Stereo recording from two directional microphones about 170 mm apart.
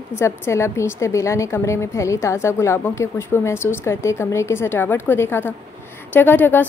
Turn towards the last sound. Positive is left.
turn(degrees=10)  # may be behind; listen again after turning